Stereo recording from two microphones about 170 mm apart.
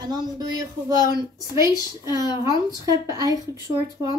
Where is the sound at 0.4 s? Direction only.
20° right (ahead or behind).